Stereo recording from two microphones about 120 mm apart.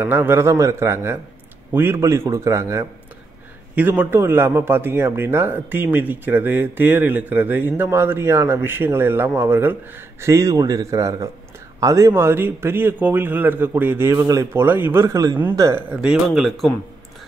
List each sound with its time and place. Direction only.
0.0 s a man's voice: 20° right (ahead or behind)
15.7 s speech: 10° right (ahead or behind)
16.3 s speech: centre (ahead or behind)